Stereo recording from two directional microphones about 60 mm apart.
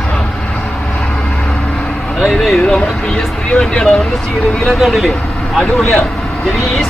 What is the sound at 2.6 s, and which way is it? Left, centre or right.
Vehicle, centre.